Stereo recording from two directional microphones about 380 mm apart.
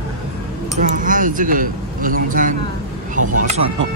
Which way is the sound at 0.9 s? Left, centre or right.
Right.